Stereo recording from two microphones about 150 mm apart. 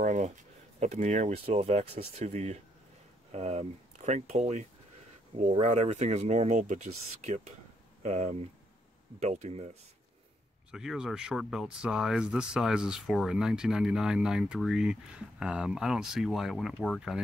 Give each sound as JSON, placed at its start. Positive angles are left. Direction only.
{"t": 0.0, "sound": "a sound", "side_deg": -55}
{"t": 0.7, "sound": "speech", "side_deg": -50}
{"t": 10.7, "sound": "speech", "side_deg": -5}